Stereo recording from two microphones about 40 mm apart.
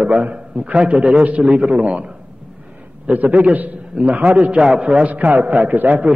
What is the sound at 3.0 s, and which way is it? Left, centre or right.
A man's voice, right.